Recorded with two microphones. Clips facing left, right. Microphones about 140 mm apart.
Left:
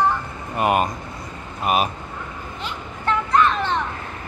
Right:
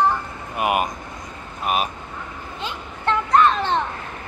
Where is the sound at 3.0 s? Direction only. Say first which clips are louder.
Right 2 dB; 30° right (ahead or behind).